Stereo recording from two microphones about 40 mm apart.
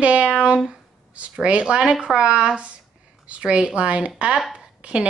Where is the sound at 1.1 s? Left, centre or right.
Right.